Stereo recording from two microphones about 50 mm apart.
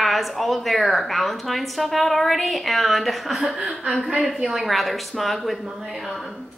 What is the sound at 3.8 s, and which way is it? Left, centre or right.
A woman's voice, centre.